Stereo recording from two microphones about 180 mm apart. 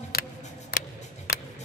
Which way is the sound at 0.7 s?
60° left (ahead or behind).